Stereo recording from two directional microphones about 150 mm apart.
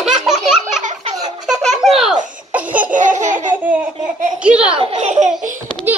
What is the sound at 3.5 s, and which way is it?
Laughter, 10° right (ahead or behind).